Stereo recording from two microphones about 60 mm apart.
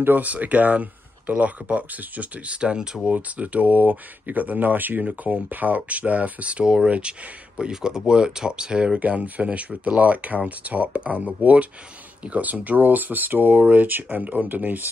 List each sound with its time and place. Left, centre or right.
0.0 s speech: right
9.0 s speech: right